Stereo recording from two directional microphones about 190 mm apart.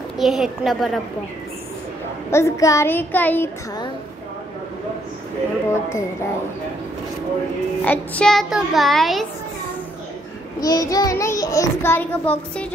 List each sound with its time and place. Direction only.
0.2 s a child's voice: centre (ahead or behind)
2.3 s child singing: 15° left (ahead or behind)
5.7 s child singing: 15° left (ahead or behind)
7.8 s a child's voice: 10° left (ahead or behind)
10.6 s child singing: 20° left (ahead or behind)